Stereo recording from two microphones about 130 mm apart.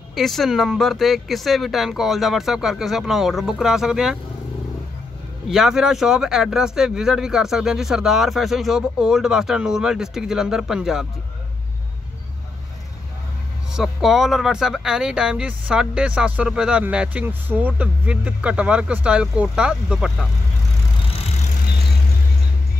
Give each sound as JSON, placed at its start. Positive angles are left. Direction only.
{"t": 0.1, "sound": "speech", "side_deg": 0}
{"t": 5.5, "sound": "speech", "side_deg": -5}
{"t": 13.7, "sound": "speech", "side_deg": 0}
{"t": 21.1, "sound": "vehicle", "side_deg": 55}